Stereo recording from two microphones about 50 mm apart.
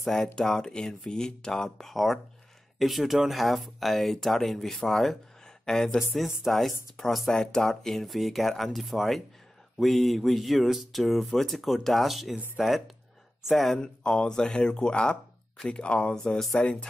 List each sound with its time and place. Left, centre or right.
0.0 s speech: centre
7.2 s speech: centre
13.7 s speech: centre